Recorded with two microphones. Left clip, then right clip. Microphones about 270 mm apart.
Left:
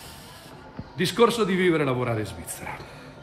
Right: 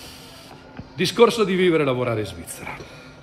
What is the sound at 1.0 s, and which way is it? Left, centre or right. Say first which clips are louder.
A man's voice: right 4 dB; centre.